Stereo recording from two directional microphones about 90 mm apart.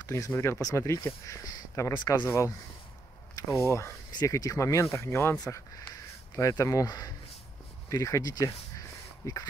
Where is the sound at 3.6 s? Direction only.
30° left (ahead or behind).